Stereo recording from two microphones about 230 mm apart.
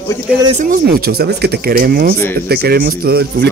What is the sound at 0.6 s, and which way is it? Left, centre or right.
A man's voice, right.